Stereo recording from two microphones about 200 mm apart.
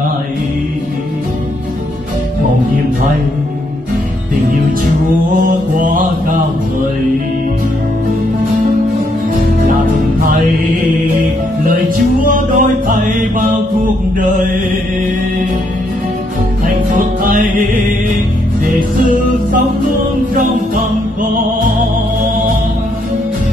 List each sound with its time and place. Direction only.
5.3 s mantra: 40° right (ahead or behind)
12.4 s music: 40° right (ahead or behind)
17.2 s music: 45° right (ahead or behind)
20.3 s music: 40° right (ahead or behind)